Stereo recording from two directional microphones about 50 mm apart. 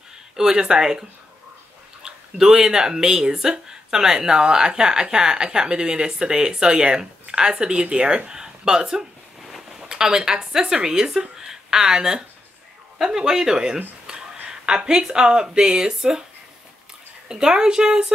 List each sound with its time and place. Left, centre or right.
0.4 s speech: centre
2.0 s speech: centre
17.3 s speech: centre